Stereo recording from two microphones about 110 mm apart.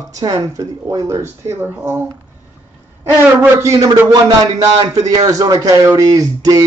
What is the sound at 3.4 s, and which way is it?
Speech, 25° right (ahead or behind).